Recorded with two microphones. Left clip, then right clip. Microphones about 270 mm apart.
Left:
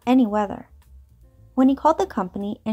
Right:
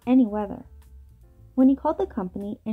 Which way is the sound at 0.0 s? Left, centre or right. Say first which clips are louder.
Left 3 dB; left.